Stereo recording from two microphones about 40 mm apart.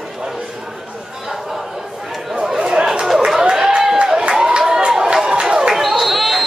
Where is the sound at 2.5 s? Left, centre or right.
Centre.